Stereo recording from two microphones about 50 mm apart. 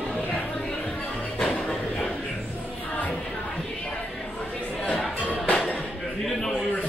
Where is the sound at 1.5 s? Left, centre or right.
Centre.